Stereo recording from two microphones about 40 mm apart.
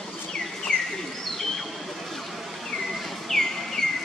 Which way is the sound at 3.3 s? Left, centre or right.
Centre.